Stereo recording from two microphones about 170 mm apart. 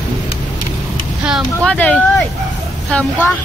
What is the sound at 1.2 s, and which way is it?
Speech, centre (ahead or behind).